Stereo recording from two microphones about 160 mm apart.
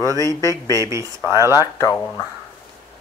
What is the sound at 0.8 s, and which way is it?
Speech, 20° right (ahead or behind).